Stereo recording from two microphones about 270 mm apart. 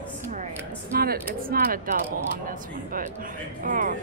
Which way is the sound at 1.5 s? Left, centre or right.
Right.